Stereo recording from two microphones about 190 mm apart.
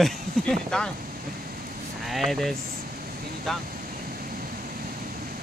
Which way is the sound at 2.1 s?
Centre (ahead or behind).